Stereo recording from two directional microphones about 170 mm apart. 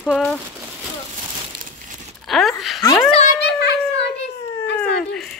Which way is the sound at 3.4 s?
85° left.